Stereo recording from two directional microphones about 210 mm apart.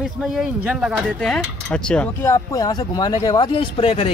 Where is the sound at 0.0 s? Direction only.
Centre (ahead or behind).